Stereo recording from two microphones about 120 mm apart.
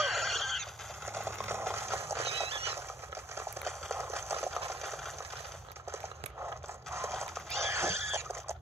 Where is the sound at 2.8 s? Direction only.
20° right (ahead or behind).